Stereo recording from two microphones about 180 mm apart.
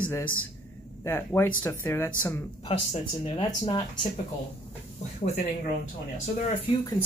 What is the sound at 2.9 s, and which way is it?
Speech, 30° left (ahead or behind).